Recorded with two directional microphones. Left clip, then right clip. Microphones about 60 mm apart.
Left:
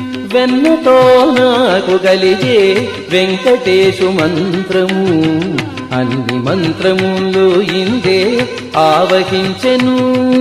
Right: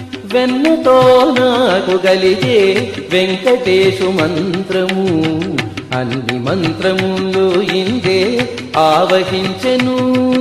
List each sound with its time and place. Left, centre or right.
0.3 s music: right
6.5 s music: right